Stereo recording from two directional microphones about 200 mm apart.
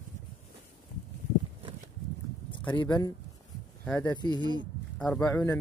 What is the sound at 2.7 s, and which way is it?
Speech, 20° left (ahead or behind).